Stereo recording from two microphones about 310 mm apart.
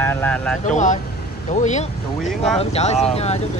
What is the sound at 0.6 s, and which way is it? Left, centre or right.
Speech, left.